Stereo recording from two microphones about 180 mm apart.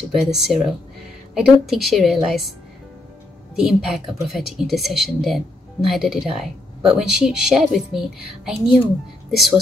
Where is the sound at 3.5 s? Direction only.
Centre (ahead or behind).